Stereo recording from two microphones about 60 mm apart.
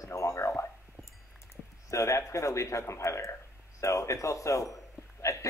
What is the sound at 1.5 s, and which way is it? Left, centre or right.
Speech, left.